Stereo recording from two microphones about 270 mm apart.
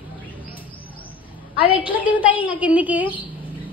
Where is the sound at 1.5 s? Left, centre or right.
Centre.